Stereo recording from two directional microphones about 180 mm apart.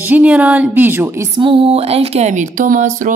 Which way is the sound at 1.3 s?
30° right (ahead or behind).